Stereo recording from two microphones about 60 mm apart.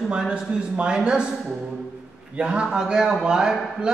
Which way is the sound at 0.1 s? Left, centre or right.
Centre.